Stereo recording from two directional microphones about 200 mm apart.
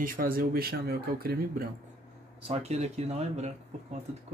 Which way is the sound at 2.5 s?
30° right (ahead or behind).